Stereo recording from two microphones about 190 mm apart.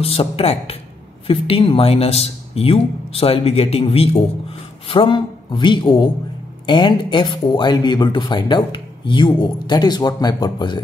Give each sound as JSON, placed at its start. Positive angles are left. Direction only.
{"t": 0.0, "sound": "a woman's voice", "side_deg": 30}